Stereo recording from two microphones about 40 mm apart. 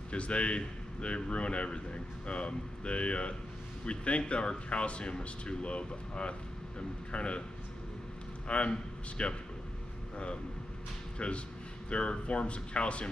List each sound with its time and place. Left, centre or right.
0.1 s speech: left
8.5 s speech: left